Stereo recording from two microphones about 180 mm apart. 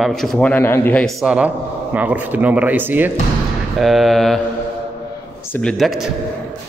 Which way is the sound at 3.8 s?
Centre (ahead or behind).